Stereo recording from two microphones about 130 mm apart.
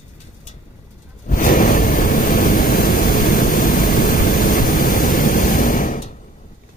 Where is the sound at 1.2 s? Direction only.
90° left.